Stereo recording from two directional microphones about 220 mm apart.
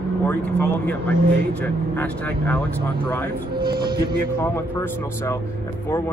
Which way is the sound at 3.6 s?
45° right (ahead or behind).